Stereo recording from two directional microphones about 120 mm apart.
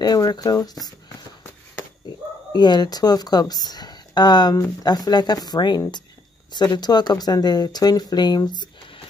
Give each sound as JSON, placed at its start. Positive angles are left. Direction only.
{"t": 0.0, "sound": "speech", "side_deg": 35}
{"t": 2.5, "sound": "speech", "side_deg": 35}